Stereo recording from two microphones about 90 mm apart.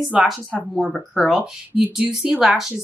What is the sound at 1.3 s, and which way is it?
Speech, 15° right (ahead or behind).